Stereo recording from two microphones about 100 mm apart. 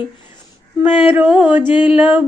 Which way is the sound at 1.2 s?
15° right (ahead or behind).